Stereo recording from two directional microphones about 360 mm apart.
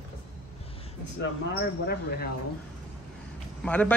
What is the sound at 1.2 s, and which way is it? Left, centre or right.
Speech, left.